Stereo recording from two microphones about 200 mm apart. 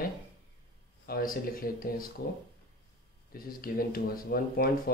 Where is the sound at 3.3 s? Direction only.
45° left (ahead or behind).